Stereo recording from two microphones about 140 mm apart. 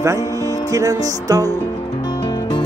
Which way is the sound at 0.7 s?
25° right (ahead or behind).